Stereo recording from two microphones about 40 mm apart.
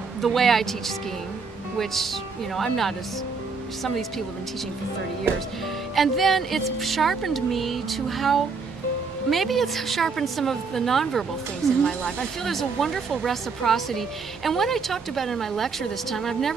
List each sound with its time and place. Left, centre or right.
0.2 s speech: centre
2.5 s speech: centre
5.9 s speech: centre
11.8 s speech: centre
12.4 s speech: centre